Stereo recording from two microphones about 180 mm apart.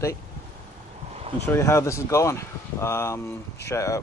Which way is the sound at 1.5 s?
15° left (ahead or behind).